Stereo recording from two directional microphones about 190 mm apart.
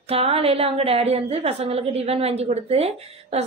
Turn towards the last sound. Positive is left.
turn(degrees=-35)  # may be behind; listen again after turning